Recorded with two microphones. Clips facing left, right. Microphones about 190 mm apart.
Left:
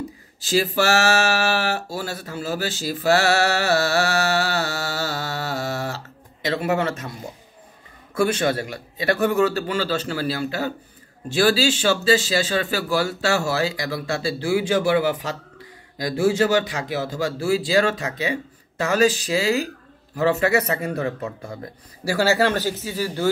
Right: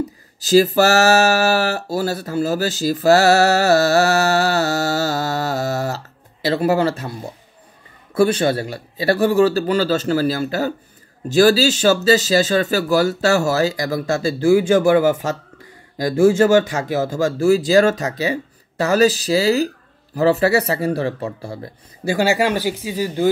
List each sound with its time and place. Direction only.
0.4 s speech: 40° right (ahead or behind)
22.1 s speech: 15° right (ahead or behind)